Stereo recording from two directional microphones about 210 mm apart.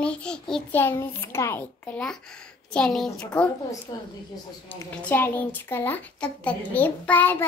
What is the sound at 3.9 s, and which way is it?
Speech, 20° left (ahead or behind).